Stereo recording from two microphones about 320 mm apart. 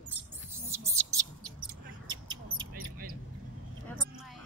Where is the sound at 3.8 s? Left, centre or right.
Centre.